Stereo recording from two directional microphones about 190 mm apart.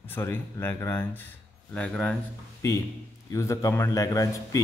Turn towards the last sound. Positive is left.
turn(degrees=15)  # may be behind; listen again after turning